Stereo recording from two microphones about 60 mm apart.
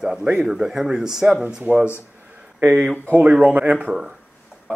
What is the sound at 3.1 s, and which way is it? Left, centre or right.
Speech, right.